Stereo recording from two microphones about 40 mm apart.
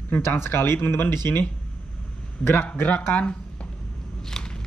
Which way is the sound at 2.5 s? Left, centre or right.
Left.